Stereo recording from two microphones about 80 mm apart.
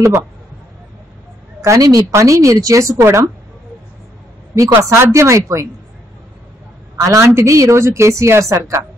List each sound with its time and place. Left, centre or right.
1.6 s a woman's voice: right
4.6 s a woman's voice: right
7.0 s a woman's voice: right